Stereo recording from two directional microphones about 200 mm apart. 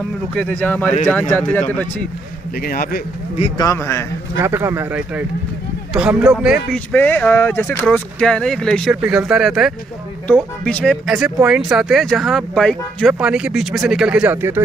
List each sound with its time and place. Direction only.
0.4 s speech: 5° left (ahead or behind)
2.5 s a man's voice: 45° left (ahead or behind)
3.3 s speech: 30° left (ahead or behind)
3.6 s speech: 15° left (ahead or behind)
4.4 s speech: 15° right (ahead or behind)